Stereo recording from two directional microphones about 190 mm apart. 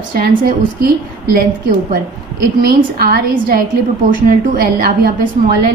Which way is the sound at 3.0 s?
50° right (ahead or behind).